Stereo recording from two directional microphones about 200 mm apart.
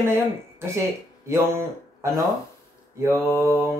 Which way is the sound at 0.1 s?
15° right (ahead or behind).